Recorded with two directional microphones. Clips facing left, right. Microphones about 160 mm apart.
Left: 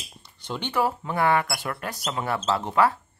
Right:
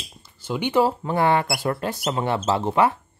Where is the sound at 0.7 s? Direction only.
30° right (ahead or behind).